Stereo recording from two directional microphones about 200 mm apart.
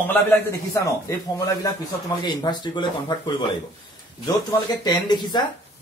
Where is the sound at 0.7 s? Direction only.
15° left (ahead or behind).